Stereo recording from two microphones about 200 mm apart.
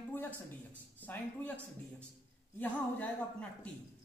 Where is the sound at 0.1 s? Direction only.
10° left (ahead or behind).